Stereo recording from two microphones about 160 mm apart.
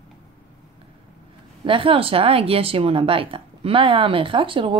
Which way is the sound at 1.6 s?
35° right (ahead or behind).